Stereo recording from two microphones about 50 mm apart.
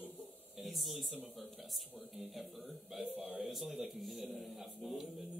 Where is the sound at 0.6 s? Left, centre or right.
Centre.